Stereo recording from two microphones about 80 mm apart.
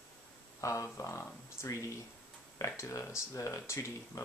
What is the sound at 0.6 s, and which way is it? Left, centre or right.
Speech, left.